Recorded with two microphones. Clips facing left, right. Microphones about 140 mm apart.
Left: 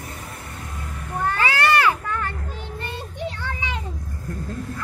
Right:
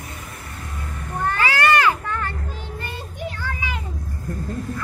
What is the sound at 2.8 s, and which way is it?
Child singing, 25° left (ahead or behind).